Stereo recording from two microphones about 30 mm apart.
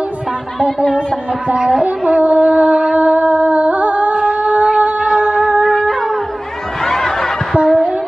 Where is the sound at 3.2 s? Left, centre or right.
Right.